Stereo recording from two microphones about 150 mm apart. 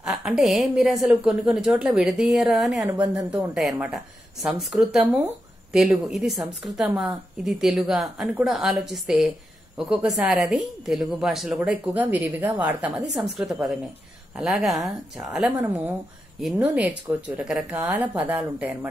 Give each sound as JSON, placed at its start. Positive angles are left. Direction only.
{"t": 0.0, "sound": "a woman's voice", "side_deg": -5}
{"t": 2.9, "sound": "a woman's voice", "side_deg": -20}
{"t": 3.3, "sound": "a woman's voice", "side_deg": 0}
{"t": 5.0, "sound": "a woman's voice", "side_deg": -10}